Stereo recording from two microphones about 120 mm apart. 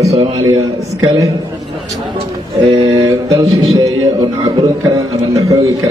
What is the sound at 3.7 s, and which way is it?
A man's voice, 35° right (ahead or behind).